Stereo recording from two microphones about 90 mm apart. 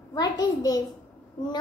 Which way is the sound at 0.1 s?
45° left (ahead or behind).